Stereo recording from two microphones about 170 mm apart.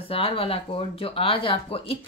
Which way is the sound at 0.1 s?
35° left (ahead or behind).